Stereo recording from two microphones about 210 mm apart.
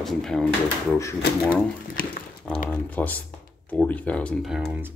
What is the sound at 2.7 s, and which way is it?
Speech, 5° left (ahead or behind).